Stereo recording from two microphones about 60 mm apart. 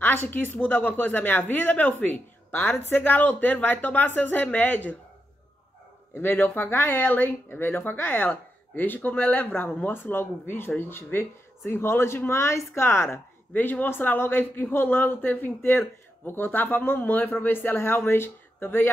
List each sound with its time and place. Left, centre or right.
0.0 s a man's voice: left
6.1 s a man's voice: left
13.5 s a man's voice: left